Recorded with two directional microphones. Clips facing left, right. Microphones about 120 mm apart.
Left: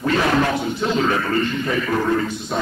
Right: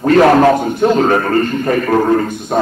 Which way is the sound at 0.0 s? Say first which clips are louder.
Right 10 dB; 55° right (ahead or behind).